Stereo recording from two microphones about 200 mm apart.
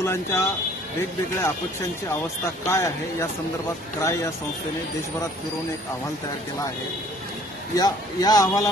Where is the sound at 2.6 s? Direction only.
15° left (ahead or behind).